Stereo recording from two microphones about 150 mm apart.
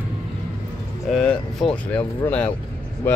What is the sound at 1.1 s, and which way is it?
Speech, 5° left (ahead or behind).